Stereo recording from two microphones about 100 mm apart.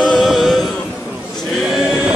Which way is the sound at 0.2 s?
Centre (ahead or behind).